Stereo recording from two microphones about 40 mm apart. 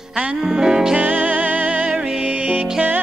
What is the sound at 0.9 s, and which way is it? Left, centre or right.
Music, right.